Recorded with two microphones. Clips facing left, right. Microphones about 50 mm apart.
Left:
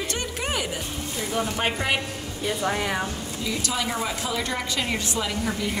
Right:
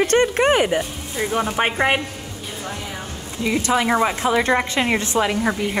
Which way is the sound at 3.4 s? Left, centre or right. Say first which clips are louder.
Right 9 dB; right.